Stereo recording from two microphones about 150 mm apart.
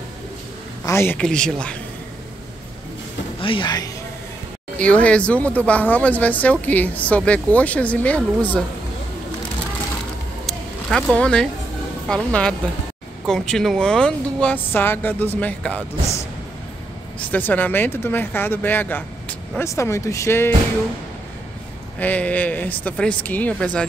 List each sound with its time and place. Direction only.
0.8 s speech: 15° left (ahead or behind)
1.2 s speech: 5° left (ahead or behind)
3.3 s speech: 35° left (ahead or behind)
4.7 s speech: 10° left (ahead or behind)
10.4 s a sound: centre (ahead or behind)
12.1 s speech: 5° left (ahead or behind)
17.3 s speech: 10° left (ahead or behind)
22.0 s speech: 10° left (ahead or behind)